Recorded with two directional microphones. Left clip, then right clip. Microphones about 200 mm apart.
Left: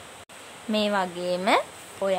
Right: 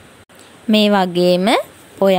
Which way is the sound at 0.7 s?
35° right (ahead or behind).